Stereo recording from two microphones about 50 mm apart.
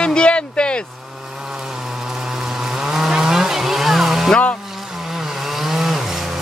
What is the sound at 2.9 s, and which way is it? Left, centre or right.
Vehicle, centre.